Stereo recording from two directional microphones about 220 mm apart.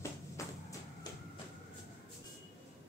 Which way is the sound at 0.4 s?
15° left (ahead or behind).